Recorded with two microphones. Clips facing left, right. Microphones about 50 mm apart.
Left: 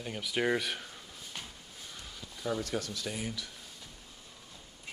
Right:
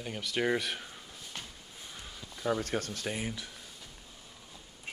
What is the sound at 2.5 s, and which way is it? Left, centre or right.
Speech, right.